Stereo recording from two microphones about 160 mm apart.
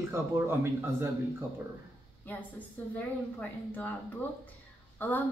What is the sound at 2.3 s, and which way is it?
Speech, 10° left (ahead or behind).